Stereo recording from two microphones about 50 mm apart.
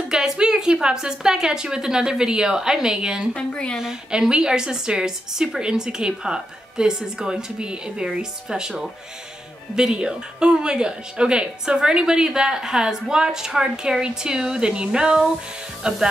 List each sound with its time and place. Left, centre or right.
0.1 s a woman's voice: centre
3.3 s speech: centre
4.1 s a woman's voice: centre